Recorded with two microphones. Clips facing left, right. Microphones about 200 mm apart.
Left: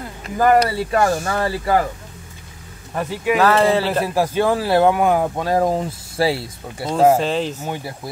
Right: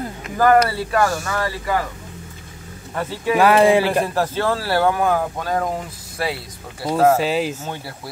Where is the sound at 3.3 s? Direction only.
15° right (ahead or behind).